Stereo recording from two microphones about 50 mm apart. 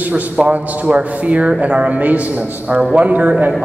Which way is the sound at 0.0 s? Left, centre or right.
Right.